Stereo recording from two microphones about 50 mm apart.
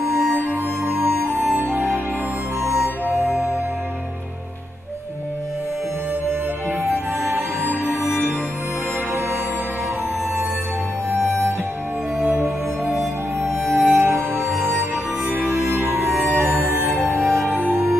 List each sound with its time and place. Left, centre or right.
0.4 s music: right
1.6 s music: right
3.3 s music: centre
7.6 s music: right
12.9 s music: centre
13.7 s music: right
14.0 s music: right
14.6 s music: right
15.5 s music: right
17.2 s music: centre
17.6 s music: right